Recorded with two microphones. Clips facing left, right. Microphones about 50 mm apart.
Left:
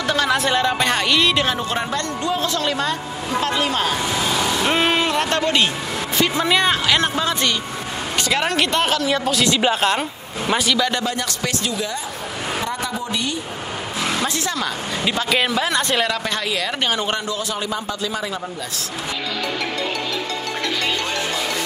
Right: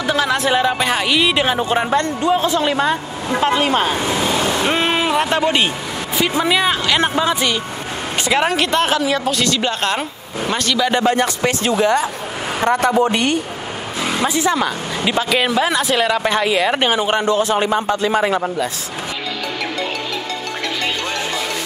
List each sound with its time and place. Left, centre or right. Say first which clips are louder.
0.0 s speech: right 2 dB; centre; by 4.0 s right
4.0 s vehicle: right 3 dB; right
4.6 s speech: right 1 dB; centre
7.0 s speech: right 3 dB; centre
8.5 s speech: right 2 dB; centre
11.1 s a man's voice: right 8 dB; right
14.0 s speech: right 6 dB; centre
16.2 s speech: right 7 dB; right
17.2 s a man's voice: right 9 dB; right